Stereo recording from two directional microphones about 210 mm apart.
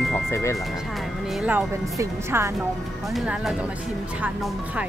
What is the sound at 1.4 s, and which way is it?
Speech, 10° right (ahead or behind).